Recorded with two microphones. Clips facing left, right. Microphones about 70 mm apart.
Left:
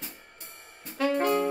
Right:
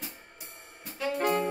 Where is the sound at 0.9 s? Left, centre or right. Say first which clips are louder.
Left 6 dB; left.